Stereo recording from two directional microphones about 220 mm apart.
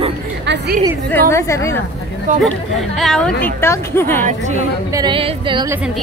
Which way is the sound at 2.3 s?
35° right (ahead or behind).